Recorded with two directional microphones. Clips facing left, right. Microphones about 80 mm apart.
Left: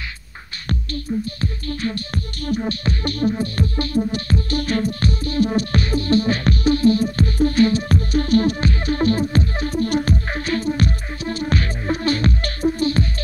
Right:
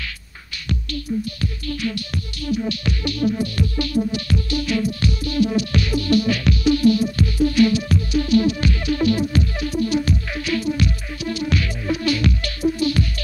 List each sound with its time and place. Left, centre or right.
1.4 s music: left